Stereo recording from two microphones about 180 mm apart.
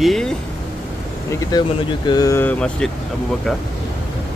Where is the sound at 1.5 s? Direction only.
20° left (ahead or behind); by 2.8 s 5° left (ahead or behind).